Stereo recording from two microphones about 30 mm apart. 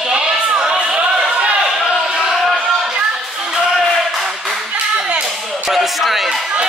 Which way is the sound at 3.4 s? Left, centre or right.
Right.